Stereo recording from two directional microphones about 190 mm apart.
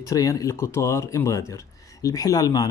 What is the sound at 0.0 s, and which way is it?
Speech, 15° left (ahead or behind).